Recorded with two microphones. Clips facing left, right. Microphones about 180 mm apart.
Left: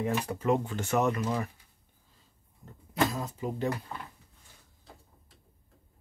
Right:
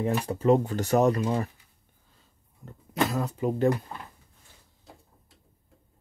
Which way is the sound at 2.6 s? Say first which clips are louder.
Right 1 dB; 70° right (ahead or behind).